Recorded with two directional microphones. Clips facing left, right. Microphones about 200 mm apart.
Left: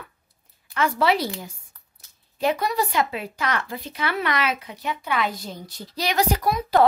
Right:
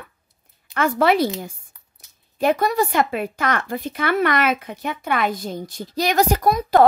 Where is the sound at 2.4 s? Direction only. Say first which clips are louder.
Right 4 dB; 50° right (ahead or behind).